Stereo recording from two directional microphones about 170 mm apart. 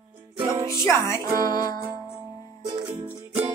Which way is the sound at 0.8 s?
15° left (ahead or behind).